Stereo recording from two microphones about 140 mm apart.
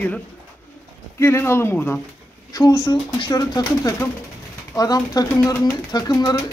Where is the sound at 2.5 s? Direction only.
30° left (ahead or behind).